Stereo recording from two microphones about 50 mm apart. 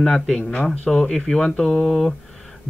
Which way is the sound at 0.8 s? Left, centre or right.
Left.